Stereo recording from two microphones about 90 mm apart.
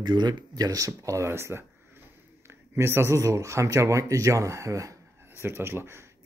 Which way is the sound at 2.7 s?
25° right (ahead or behind).